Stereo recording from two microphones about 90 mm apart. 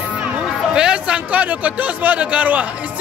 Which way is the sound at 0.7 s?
10° right (ahead or behind).